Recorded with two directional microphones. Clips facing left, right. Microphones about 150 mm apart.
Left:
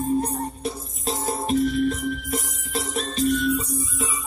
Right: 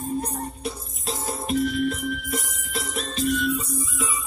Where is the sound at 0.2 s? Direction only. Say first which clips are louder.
Left 3 dB; 35° left (ahead or behind).